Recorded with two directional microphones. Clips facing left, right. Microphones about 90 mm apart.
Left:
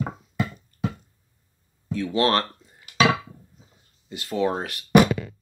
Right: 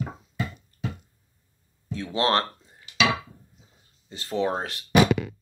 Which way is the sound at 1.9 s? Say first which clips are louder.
Left 3 dB; 20° right (ahead or behind).